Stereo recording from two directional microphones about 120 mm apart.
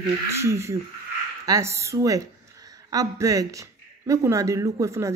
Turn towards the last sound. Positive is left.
turn(degrees=-25)  # may be behind; listen again after turning